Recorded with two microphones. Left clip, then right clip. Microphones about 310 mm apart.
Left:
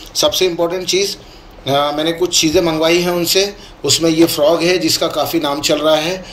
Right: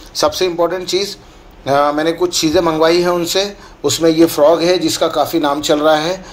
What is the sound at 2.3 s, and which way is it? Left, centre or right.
Speech, right.